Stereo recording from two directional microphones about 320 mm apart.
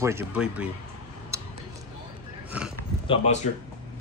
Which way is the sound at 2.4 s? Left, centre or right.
Centre.